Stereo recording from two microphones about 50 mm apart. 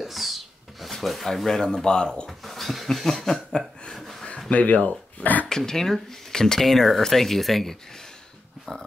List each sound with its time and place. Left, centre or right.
0.0 s rub: centre
2.2 s a sound: centre
4.5 s speech: left
5.5 s speech: centre